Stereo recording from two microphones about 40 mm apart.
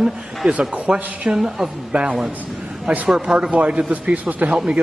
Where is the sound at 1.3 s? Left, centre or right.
Centre.